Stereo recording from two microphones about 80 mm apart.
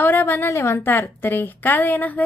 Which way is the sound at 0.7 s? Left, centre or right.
Left.